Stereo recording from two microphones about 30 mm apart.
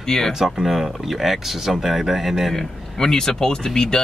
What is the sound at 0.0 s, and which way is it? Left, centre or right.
Speech, centre.